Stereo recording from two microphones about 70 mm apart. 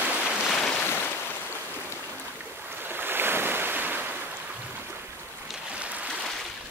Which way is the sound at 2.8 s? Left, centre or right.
Right.